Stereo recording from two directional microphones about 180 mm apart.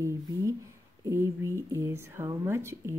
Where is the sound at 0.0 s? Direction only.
15° right (ahead or behind).